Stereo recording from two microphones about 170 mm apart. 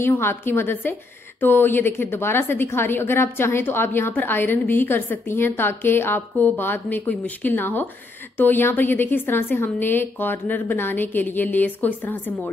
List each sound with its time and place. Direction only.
0.0 s a woman's voice: 15° left (ahead or behind)